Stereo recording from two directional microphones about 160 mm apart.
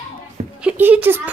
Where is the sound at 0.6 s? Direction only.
10° right (ahead or behind).